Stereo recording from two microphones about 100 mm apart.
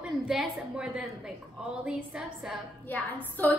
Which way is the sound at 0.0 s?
10° right (ahead or behind).